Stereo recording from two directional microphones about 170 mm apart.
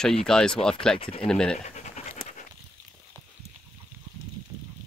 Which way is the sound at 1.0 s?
35° left (ahead or behind).